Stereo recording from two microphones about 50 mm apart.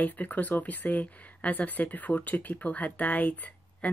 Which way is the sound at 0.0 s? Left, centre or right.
Left.